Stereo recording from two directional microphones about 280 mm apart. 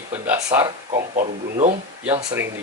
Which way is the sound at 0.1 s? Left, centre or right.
Centre.